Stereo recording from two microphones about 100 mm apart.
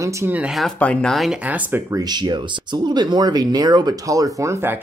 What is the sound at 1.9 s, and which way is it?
Speech, 40° right (ahead or behind).